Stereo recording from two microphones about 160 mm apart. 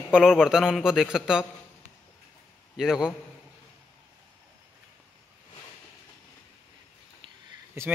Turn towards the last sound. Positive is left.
turn(degrees=-15)  # may be behind; listen again after turning